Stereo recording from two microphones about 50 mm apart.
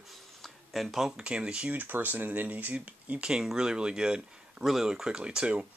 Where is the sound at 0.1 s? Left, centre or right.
Centre.